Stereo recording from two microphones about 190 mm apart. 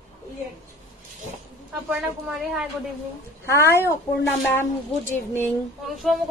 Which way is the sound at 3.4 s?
15° left (ahead or behind).